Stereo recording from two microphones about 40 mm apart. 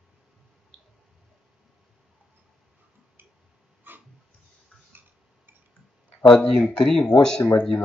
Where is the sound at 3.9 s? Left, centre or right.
Right.